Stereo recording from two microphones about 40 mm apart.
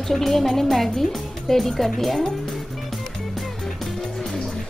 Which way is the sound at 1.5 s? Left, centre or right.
Centre.